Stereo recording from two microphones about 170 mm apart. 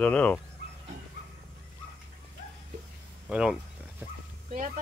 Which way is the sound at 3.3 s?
5° right (ahead or behind).